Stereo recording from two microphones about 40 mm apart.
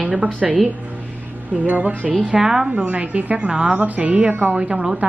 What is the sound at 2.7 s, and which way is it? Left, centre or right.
Speech, right.